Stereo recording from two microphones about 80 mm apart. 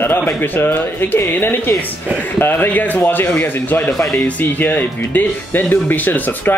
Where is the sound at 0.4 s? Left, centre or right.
Left.